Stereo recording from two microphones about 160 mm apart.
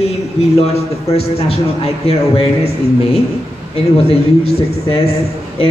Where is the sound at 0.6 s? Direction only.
40° left (ahead or behind).